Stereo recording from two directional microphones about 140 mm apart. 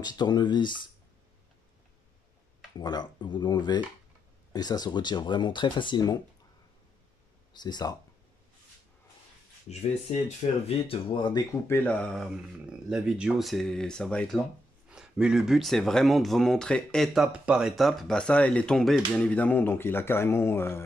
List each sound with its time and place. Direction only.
0.0 s speech: 30° left (ahead or behind)
2.8 s speech: 30° left (ahead or behind)
7.5 s speech: 30° left (ahead or behind)
9.7 s speech: 50° left (ahead or behind); by 11.4 s 35° left (ahead or behind)
11.6 s speech: 15° left (ahead or behind)
14.9 s speech: 5° right (ahead or behind); by 20.8 s 15° left (ahead or behind)